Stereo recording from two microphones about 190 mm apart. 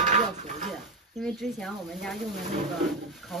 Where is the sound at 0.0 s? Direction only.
40° right (ahead or behind).